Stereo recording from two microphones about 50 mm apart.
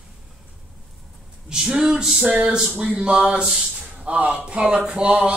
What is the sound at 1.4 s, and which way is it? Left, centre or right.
Speech, centre.